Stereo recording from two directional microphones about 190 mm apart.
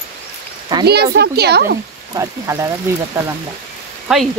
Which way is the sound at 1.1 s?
60° right (ahead or behind).